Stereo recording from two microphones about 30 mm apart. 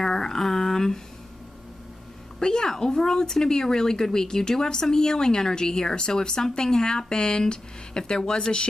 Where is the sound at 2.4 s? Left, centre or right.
Left.